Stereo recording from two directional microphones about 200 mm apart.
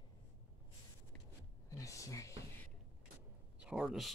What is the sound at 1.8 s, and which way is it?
Speech, 15° left (ahead or behind).